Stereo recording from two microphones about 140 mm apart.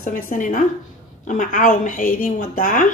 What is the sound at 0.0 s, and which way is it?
Speech, 70° left (ahead or behind).